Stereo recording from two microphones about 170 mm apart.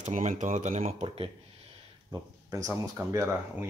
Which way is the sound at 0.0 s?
45° right (ahead or behind).